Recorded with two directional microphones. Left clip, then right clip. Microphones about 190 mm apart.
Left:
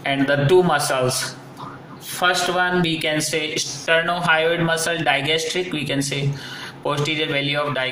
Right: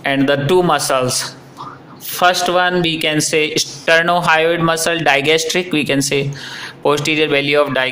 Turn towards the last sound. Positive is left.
turn(degrees=-55)  # may be behind; listen again after turning